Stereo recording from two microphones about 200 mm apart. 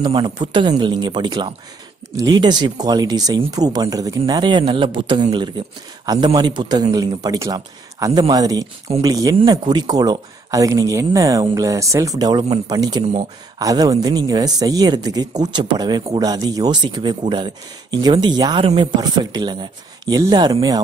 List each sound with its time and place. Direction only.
0.0 s speech: 25° right (ahead or behind)